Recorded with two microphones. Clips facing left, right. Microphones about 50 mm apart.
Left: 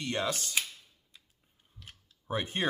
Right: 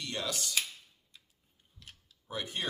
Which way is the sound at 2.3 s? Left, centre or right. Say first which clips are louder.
Left 5 dB; left.